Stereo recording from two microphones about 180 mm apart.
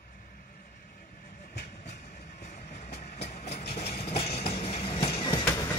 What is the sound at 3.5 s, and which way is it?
Vehicle, 60° left (ahead or behind).